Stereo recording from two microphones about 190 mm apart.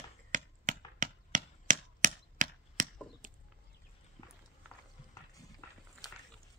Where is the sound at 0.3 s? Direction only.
40° right (ahead or behind).